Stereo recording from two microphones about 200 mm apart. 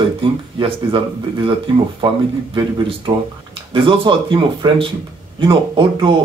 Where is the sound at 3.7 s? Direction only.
25° right (ahead or behind).